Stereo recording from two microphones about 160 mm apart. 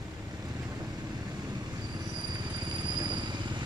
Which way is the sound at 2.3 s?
25° right (ahead or behind).